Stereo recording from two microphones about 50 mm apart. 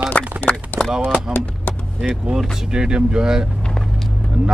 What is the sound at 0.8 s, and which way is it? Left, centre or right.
Speech, centre.